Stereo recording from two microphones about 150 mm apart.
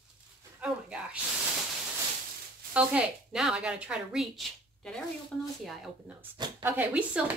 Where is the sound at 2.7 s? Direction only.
5° right (ahead or behind).